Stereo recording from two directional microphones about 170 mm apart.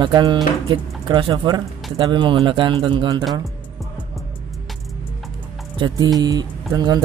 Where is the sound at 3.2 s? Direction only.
Centre (ahead or behind).